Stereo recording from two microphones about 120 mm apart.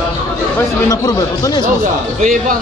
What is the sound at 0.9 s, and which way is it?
Speech, 30° left (ahead or behind).